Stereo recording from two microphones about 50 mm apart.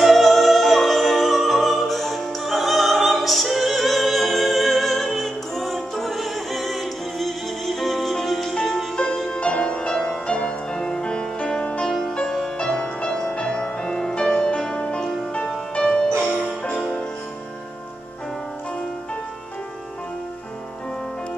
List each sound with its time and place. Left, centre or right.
0.0 s music: centre